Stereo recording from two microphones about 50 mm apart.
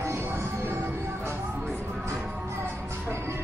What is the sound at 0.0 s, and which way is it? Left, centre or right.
Music, right.